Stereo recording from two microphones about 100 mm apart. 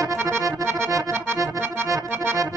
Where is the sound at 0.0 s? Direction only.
30° right (ahead or behind).